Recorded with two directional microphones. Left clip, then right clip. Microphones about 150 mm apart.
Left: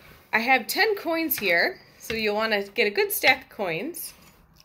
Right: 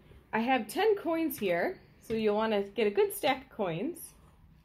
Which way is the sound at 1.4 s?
40° left (ahead or behind).